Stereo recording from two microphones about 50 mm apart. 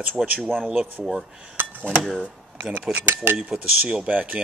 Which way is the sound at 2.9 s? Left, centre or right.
Right.